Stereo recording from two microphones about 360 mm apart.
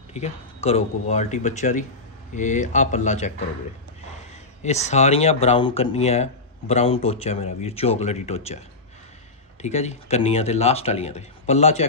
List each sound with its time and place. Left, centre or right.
0.1 s speech: centre
4.6 s speech: centre